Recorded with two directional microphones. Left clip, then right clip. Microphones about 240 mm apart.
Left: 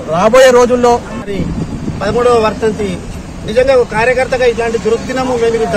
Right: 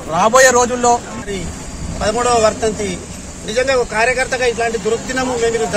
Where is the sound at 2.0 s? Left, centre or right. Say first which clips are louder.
Left 3 dB; centre.